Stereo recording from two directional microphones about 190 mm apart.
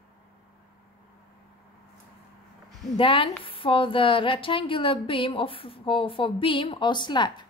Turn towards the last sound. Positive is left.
turn(degrees=25)  # may be behind; listen again after turning